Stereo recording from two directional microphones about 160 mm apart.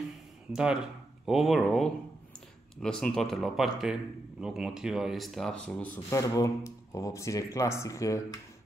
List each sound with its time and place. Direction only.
0.5 s speech: 5° right (ahead or behind); by 8.4 s 20° left (ahead or behind)